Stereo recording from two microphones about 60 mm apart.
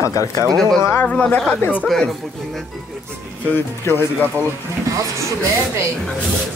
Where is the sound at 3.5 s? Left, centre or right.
Left.